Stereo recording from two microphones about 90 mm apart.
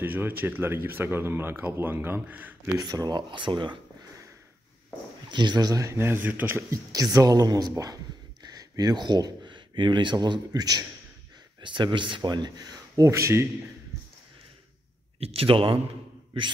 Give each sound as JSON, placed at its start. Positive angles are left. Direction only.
{"t": 0.0, "sound": "speech", "side_deg": -20}
{"t": 2.8, "sound": "speech", "side_deg": -45}
{"t": 5.3, "sound": "speech", "side_deg": -55}
{"t": 6.7, "sound": "speech", "side_deg": -45}
{"t": 11.6, "sound": "speech", "side_deg": -65}
{"t": 15.1, "sound": "speech", "side_deg": -90}